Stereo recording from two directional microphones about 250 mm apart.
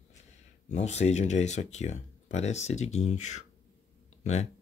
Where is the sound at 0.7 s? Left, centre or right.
Left.